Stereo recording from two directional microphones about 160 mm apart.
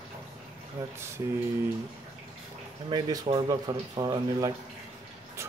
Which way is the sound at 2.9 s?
25° right (ahead or behind).